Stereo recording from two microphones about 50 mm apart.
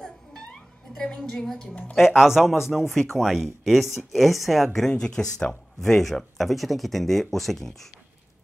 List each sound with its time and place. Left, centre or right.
0.3 s music: centre
1.7 s speech: left
2.0 s speech: centre
2.9 s speech: centre
4.7 s speech: centre